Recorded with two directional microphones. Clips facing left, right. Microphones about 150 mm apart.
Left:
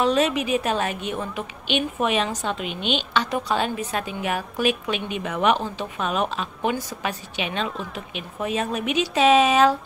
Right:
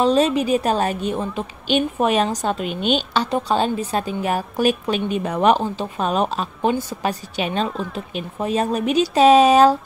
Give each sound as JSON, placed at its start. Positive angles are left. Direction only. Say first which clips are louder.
{"t": 0.0, "sound": "a woman's voice", "louder": "right 4 dB", "side_deg": -35}